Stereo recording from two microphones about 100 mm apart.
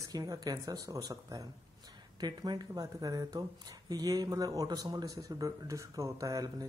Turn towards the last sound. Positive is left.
turn(degrees=-35)  # may be behind; listen again after turning